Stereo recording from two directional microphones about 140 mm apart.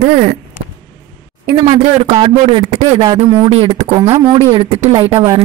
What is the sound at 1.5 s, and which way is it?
A man's voice, 35° right (ahead or behind).